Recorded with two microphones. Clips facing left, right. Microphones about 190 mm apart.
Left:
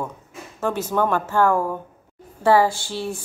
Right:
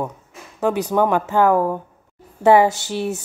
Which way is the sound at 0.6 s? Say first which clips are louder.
Right 4 dB; 15° right (ahead or behind).